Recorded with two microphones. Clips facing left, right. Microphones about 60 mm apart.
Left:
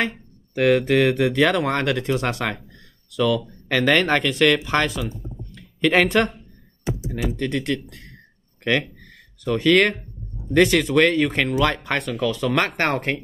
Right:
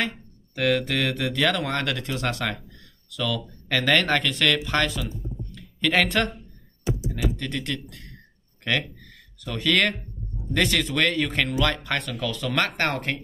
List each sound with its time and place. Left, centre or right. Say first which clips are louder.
0.6 s speech: left 6 dB; centre